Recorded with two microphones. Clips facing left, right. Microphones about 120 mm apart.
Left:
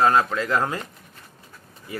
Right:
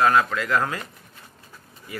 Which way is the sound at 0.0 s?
30° left (ahead or behind).